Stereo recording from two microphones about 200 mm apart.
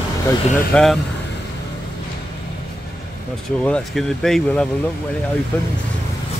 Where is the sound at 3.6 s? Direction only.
5° left (ahead or behind).